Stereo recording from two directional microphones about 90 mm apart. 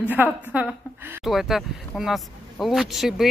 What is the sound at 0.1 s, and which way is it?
Speech, 20° right (ahead or behind).